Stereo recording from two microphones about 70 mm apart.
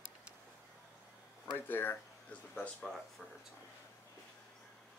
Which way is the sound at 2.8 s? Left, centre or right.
Centre.